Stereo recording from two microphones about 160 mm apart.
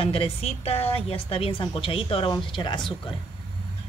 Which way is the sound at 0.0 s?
35° left (ahead or behind).